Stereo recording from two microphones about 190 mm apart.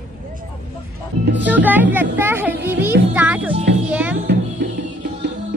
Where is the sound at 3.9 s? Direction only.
10° right (ahead or behind).